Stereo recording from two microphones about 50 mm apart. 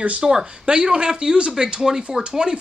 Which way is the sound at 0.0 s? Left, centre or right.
Right.